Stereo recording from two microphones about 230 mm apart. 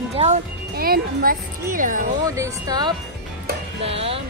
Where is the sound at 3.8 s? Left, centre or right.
Right.